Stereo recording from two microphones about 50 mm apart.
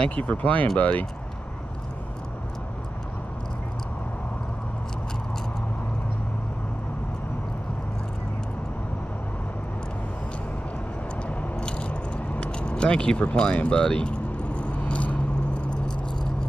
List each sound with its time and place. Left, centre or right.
0.1 s speech: left
11.2 s keys jangling: left